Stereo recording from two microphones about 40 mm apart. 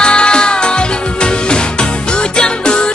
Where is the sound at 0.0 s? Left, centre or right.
Left.